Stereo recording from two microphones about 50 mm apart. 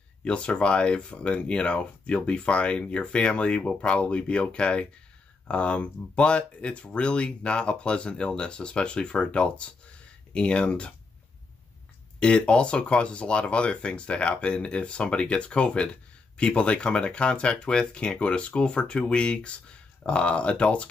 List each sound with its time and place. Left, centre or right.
0.2 s speech: left
12.2 s speech: left